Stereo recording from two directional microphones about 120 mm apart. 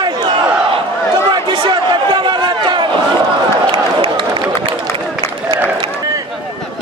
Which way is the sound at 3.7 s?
45° right (ahead or behind).